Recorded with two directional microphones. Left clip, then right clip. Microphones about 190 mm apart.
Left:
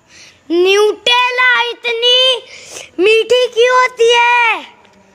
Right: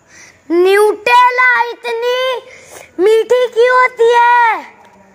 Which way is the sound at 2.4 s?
30° left (ahead or behind).